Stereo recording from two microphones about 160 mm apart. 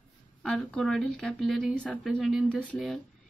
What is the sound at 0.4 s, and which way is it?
A woman's voice, 5° left (ahead or behind).